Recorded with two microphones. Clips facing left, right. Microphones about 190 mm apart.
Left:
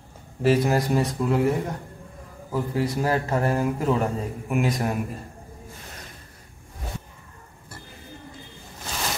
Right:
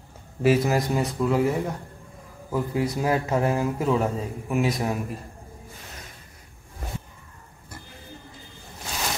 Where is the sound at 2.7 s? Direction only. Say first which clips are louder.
Even; 10° right (ahead or behind).